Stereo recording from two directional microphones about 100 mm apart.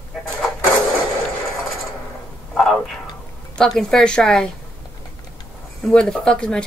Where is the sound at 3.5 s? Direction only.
5° left (ahead or behind).